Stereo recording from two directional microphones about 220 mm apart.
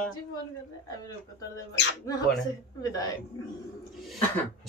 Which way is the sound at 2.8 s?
15° left (ahead or behind).